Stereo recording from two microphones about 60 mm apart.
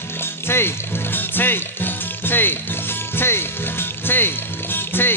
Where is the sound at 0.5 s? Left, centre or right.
Left.